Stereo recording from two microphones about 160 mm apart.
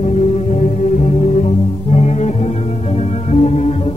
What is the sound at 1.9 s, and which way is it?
Music, 45° left (ahead or behind).